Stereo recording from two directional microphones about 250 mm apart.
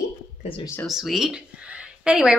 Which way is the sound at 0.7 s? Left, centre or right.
Centre.